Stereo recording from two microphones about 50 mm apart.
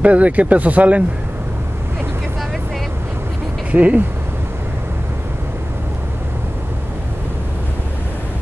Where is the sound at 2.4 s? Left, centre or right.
Centre.